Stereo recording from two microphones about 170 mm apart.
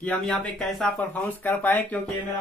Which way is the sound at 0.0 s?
10° left (ahead or behind).